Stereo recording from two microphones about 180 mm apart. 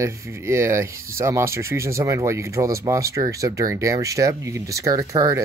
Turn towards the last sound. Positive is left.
turn(degrees=-20)  # may be behind; listen again after turning